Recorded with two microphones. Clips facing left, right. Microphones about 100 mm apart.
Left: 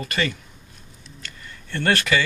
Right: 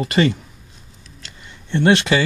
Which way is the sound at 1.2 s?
20° right (ahead or behind).